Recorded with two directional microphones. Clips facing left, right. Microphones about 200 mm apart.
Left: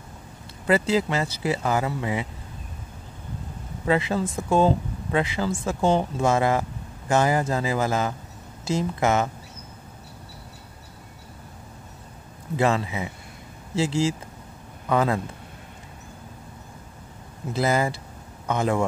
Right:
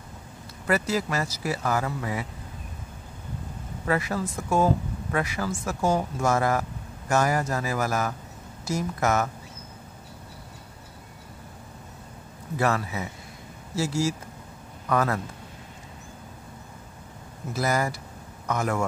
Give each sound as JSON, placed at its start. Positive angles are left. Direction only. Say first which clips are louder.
{"t": 0.7, "sound": "speech", "louder": "left 4 dB", "side_deg": 25}
{"t": 3.8, "sound": "speech", "louder": "left 4 dB", "side_deg": 20}
{"t": 12.5, "sound": "speech", "louder": "left 3 dB", "side_deg": 25}
{"t": 14.9, "sound": "speech", "louder": "left 2 dB", "side_deg": 20}
{"t": 17.5, "sound": "speech", "louder": "left 3 dB", "side_deg": 25}